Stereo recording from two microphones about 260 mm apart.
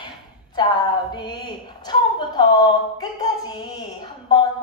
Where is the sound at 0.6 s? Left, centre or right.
Centre.